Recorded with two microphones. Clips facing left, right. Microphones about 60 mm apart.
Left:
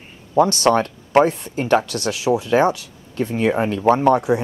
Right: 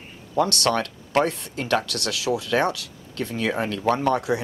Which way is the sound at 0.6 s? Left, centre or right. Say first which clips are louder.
Left 7 dB; left.